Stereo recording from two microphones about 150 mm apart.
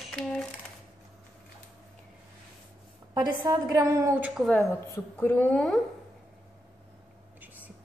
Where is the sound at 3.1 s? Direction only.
25° right (ahead or behind).